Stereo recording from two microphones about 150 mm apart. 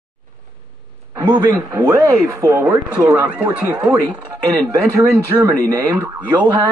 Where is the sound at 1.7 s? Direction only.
20° right (ahead or behind).